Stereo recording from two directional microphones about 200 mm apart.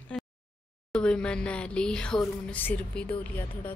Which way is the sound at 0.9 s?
5° left (ahead or behind).